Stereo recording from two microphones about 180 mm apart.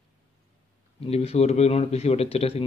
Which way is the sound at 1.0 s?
35° left (ahead or behind).